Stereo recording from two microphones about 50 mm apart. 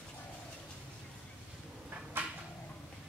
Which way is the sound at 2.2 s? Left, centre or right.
Right.